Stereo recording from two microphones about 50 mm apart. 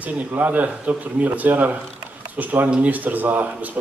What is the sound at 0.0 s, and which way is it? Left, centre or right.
A man's voice, right.